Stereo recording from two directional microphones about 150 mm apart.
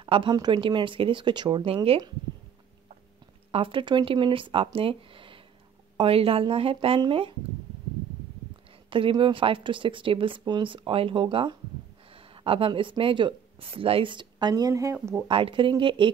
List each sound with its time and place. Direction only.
0.0 s speech: 35° right (ahead or behind)
3.5 s speech: 35° right (ahead or behind)
8.9 s speech: 35° right (ahead or behind)
15.2 s speech: 35° right (ahead or behind)